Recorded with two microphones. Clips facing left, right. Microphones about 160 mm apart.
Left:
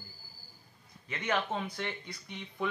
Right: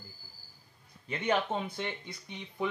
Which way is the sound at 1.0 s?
25° right (ahead or behind).